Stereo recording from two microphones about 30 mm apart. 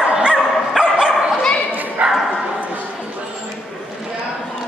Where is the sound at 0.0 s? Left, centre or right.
Right.